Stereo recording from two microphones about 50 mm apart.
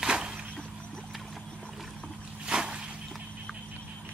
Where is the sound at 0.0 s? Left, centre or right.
Centre.